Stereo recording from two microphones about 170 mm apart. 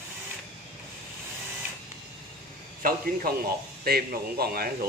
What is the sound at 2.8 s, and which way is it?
A man's voice, 55° right (ahead or behind).